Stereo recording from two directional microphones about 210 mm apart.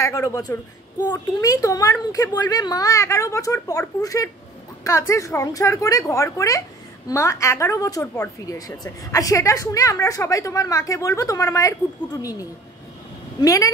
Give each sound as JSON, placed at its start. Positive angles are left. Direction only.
{"t": 0.0, "sound": "a woman's voice", "side_deg": 15}